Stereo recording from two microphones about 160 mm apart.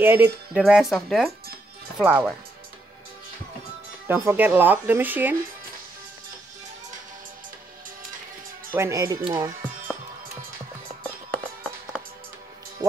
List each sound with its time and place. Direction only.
0.0 s speech: 15° right (ahead or behind)
2.0 s speech: 10° right (ahead or behind)
4.1 s speech: 10° right (ahead or behind)
8.7 s speech: 20° right (ahead or behind)